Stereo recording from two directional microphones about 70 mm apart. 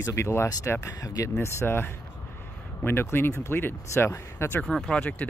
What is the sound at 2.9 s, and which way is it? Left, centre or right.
Speech, left.